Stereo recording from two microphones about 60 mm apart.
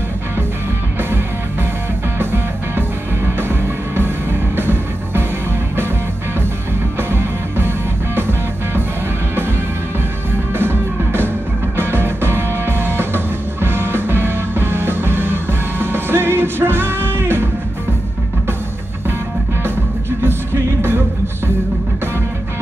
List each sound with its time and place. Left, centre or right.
2.1 s music: right
7.0 s music: right
10.5 s music: right